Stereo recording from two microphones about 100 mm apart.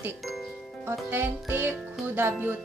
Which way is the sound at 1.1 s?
20° right (ahead or behind).